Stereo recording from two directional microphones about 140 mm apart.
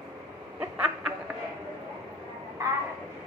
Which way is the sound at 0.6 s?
10° right (ahead or behind).